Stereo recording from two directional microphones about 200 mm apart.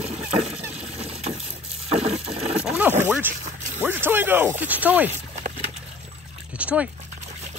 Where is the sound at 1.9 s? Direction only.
30° right (ahead or behind).